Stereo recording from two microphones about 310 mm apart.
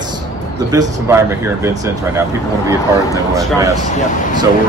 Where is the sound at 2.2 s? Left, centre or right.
Centre.